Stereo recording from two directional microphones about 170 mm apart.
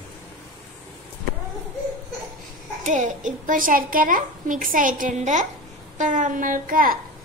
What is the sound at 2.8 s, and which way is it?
A child's voice, 45° right (ahead or behind).